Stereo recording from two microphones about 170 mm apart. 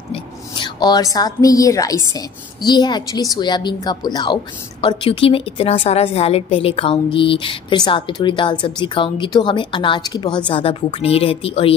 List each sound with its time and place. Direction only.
0.1 s a woman's voice: 30° left (ahead or behind)